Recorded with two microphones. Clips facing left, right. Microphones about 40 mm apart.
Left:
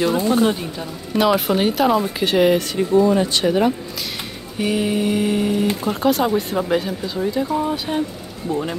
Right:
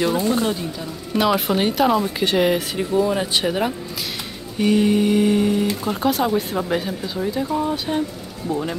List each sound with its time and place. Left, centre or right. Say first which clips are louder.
0.0 s speech: left 2 dB; centre
0.5 s speech: left 2 dB; left
1.1 s speech: left 2 dB; centre